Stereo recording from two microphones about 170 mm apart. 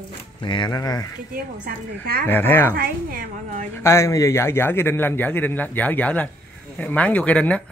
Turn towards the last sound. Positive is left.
turn(degrees=10)  # may be behind; listen again after turning